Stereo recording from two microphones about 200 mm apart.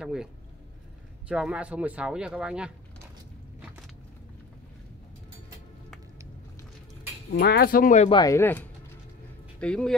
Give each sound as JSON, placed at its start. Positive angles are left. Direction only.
{"t": 0.0, "sound": "speech", "side_deg": -5}
{"t": 1.3, "sound": "speech", "side_deg": -5}
{"t": 7.3, "sound": "speech", "side_deg": 50}
{"t": 8.1, "sound": "speech", "side_deg": 15}